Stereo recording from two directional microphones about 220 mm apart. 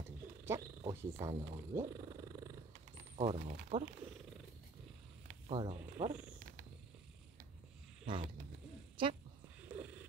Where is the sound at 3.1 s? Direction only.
30° right (ahead or behind).